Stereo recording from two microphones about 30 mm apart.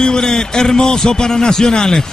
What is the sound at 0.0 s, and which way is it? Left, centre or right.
A man's voice, left.